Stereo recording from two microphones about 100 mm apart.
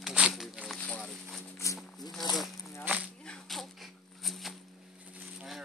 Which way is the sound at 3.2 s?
5° left (ahead or behind).